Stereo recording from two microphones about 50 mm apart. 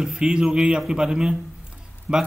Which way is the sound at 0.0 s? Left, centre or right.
Centre.